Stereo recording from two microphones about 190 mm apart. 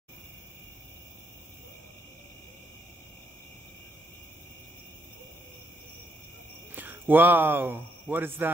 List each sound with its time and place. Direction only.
6.7 s speech: 10° right (ahead or behind)